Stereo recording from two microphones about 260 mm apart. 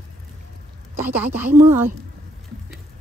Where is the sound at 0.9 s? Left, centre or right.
Centre.